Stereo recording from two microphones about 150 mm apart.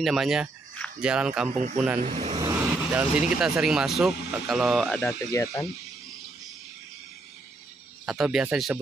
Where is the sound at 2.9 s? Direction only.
5° right (ahead or behind).